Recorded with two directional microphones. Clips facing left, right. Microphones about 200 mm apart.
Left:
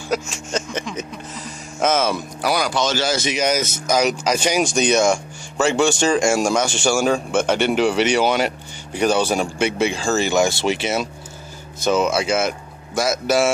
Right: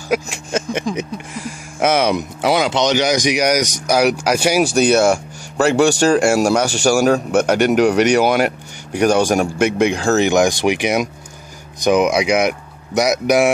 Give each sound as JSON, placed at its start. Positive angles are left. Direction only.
{"t": 0.1, "sound": "speech", "side_deg": -10}
{"t": 6.7, "sound": "a man's voice", "side_deg": -40}
{"t": 7.0, "sound": "speech", "side_deg": -10}